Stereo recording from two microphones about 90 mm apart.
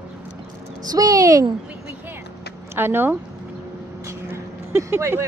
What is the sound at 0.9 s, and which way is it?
Speech, 45° right (ahead or behind).